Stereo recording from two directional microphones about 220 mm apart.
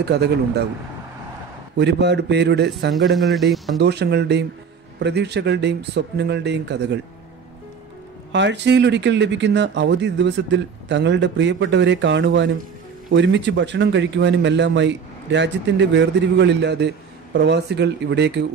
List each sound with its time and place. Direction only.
0.0 s speech: 50° right (ahead or behind)
1.8 s speech: 50° right (ahead or behind)
3.2 s speech: centre (ahead or behind)
3.7 s speech: 50° right (ahead or behind)
8.3 s speech: 55° right (ahead or behind)